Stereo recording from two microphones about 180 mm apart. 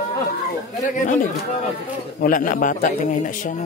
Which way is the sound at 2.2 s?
50° left (ahead or behind).